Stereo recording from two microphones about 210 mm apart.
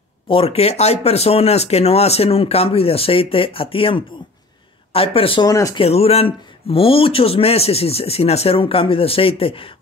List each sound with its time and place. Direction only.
0.3 s speech: 25° left (ahead or behind)
5.9 s speech: 30° left (ahead or behind)